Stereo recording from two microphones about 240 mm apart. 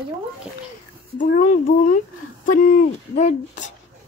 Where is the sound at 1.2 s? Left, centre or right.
Left.